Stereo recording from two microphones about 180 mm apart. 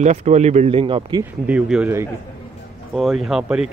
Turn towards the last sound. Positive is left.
turn(degrees=-5)  # may be behind; listen again after turning